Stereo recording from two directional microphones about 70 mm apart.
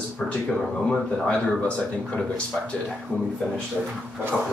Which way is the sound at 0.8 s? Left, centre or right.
Centre.